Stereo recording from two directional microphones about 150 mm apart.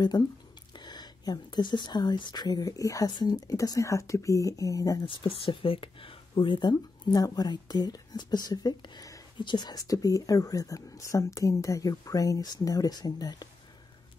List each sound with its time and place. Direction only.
0.1 s speech: 25° left (ahead or behind)
5.0 s speech: 35° left (ahead or behind)